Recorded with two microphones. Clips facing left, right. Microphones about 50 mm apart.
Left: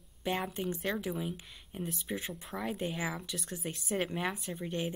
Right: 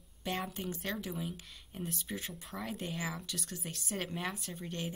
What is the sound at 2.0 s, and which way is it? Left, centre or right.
Speech, centre.